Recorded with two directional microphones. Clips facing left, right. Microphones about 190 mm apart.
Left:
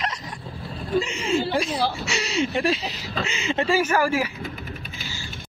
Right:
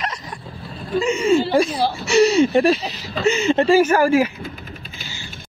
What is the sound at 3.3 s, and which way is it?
Speech, 45° right (ahead or behind).